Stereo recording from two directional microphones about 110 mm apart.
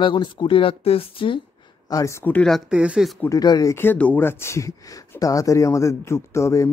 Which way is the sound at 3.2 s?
35° left (ahead or behind).